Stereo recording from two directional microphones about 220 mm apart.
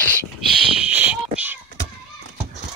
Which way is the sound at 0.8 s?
5° right (ahead or behind).